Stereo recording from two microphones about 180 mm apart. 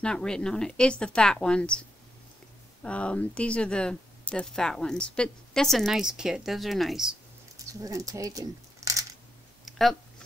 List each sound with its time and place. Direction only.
0.0 s speech: 5° left (ahead or behind)
2.8 s speech: 5° left (ahead or behind)
7.5 s speech: 20° right (ahead or behind)
9.7 s a sound: centre (ahead or behind)